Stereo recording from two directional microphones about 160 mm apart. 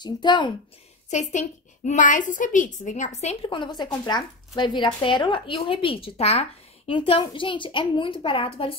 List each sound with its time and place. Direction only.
0.0 s speech: 30° left (ahead or behind)
1.1 s a woman's voice: 45° left (ahead or behind)
3.4 s speech: 30° left (ahead or behind)